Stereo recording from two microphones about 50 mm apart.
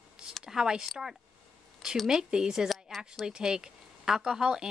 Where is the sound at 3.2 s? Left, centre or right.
Centre.